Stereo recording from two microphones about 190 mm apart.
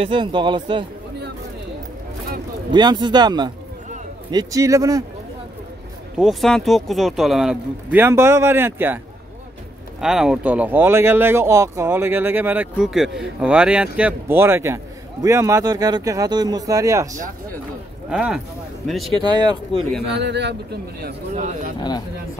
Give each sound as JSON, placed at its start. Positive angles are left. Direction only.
{"t": 0.0, "sound": "speech", "side_deg": -25}
{"t": 2.7, "sound": "speech", "side_deg": -20}
{"t": 6.1, "sound": "speech", "side_deg": 0}
{"t": 18.1, "sound": "speech", "side_deg": -5}
{"t": 20.2, "sound": "a man's voice", "side_deg": -65}
{"t": 21.4, "sound": "speech", "side_deg": -40}